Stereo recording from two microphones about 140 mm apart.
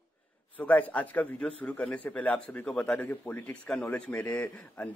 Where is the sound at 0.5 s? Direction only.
10° left (ahead or behind).